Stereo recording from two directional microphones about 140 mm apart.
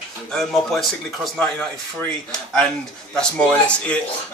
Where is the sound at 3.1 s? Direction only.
10° left (ahead or behind).